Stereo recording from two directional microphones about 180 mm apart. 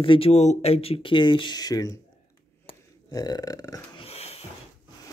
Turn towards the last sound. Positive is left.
turn(degrees=35)  # may be behind; listen again after turning